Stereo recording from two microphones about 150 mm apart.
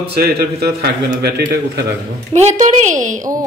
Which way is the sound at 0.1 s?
90° right.